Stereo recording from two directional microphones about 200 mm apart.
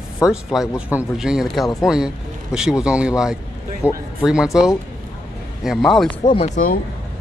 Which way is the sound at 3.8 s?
15° left (ahead or behind).